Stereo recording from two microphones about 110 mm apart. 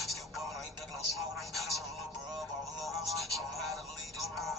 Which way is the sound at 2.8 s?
Centre (ahead or behind).